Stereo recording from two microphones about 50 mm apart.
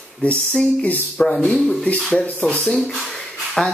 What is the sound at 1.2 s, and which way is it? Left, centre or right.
Speech, centre.